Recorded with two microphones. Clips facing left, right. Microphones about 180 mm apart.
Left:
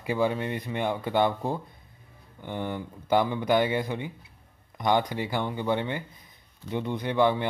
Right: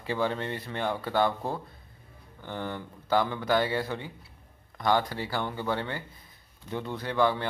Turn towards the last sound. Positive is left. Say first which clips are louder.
# left 3 dB
turn(degrees=20)  # may be behind; listen again after turning